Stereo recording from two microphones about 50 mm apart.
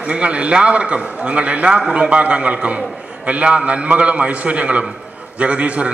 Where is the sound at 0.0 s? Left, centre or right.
Right.